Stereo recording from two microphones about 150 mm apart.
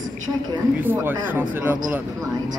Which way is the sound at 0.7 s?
15° right (ahead or behind).